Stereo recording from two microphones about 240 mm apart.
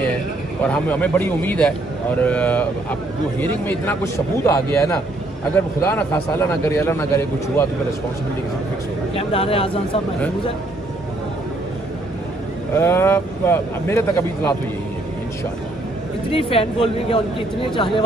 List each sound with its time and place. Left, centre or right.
0.7 s a man's voice: centre
9.1 s speech: left
12.7 s a man's voice: centre
16.3 s speech: left